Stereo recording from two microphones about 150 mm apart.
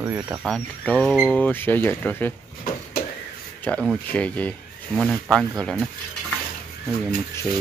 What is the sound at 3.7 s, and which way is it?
Speech, 10° left (ahead or behind).